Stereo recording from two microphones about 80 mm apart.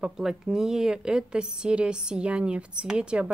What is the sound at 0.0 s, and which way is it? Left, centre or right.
A woman's voice, centre.